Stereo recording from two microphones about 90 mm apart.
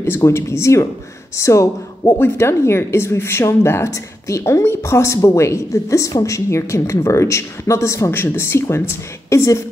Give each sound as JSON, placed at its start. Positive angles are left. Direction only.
{"t": 0.0, "sound": "speech", "side_deg": 30}